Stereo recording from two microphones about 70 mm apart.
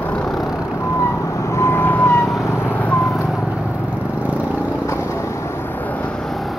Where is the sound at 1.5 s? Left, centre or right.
Left.